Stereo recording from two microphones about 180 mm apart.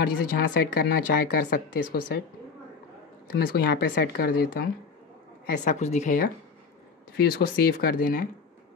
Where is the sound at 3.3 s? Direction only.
60° left (ahead or behind).